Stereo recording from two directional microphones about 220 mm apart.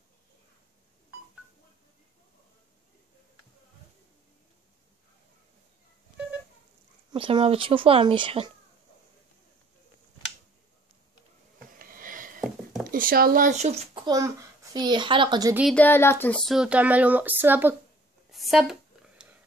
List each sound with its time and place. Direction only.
7.1 s speech: 20° right (ahead or behind)
11.8 s sniff: 40° right (ahead or behind)
12.9 s speech: 40° right (ahead or behind)
14.0 s a child's voice: 15° right (ahead or behind)
15.7 s speech: 10° left (ahead or behind); by 17.7 s 10° right (ahead or behind)
18.3 s a sound: centre (ahead or behind)